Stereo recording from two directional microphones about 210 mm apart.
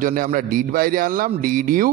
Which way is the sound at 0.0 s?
40° right (ahead or behind).